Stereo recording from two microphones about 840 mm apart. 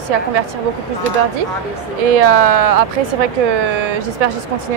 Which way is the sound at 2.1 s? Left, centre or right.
Right.